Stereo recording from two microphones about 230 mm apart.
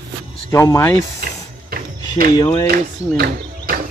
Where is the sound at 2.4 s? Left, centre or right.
Centre.